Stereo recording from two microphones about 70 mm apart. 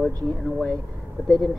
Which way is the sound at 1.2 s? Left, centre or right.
Centre.